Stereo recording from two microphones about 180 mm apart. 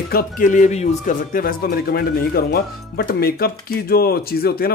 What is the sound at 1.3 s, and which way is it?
Speech, 55° left (ahead or behind).